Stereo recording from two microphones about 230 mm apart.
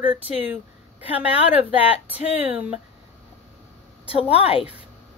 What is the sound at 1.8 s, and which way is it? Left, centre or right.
Speech, centre.